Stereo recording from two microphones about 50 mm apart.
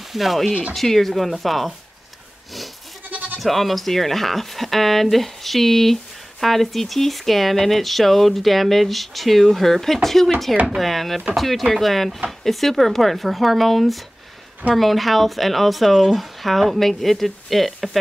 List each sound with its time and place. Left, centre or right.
0.1 s speech: centre
3.1 s goat: right
3.3 s speech: centre